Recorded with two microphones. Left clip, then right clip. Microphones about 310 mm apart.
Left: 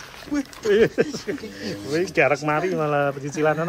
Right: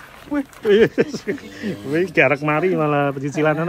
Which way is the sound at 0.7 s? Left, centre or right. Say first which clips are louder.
Right 3 dB; right.